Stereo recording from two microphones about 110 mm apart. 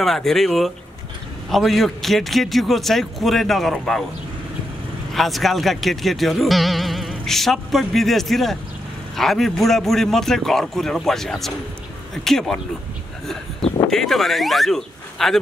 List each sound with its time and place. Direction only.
0.0 s speech: centre (ahead or behind)
5.1 s speech: centre (ahead or behind)
13.8 s speech: 5° left (ahead or behind)